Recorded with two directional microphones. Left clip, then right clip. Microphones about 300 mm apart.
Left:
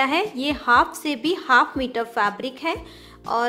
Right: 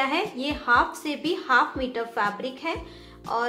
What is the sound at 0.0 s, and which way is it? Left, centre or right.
A woman's voice, left.